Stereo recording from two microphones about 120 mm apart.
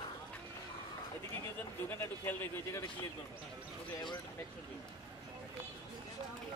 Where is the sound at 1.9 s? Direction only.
20° left (ahead or behind).